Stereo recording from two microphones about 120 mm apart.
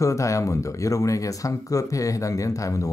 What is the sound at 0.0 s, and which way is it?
Speech, 25° left (ahead or behind).